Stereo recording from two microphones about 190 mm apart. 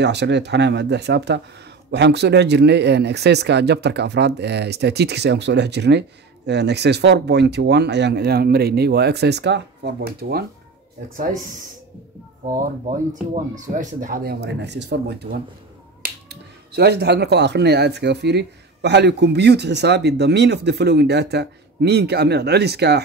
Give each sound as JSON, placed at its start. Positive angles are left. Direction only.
{"t": 0.0, "sound": "speech", "side_deg": -65}
{"t": 12.8, "sound": "speech", "side_deg": -40}